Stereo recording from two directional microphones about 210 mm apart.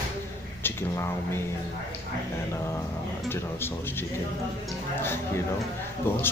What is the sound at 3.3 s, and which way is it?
Speech, 10° left (ahead or behind).